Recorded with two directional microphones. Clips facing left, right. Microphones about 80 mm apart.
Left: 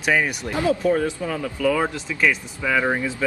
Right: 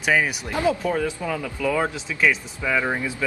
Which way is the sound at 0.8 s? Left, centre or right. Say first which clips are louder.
Left 3 dB; left.